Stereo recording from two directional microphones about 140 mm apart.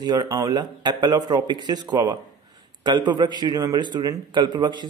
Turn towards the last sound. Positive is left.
turn(degrees=-35)  # may be behind; listen again after turning